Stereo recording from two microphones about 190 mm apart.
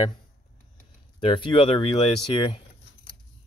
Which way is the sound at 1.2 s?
25° left (ahead or behind).